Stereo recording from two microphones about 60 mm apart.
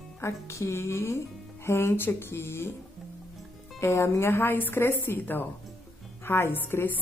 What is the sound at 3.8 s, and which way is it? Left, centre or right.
Speech, left.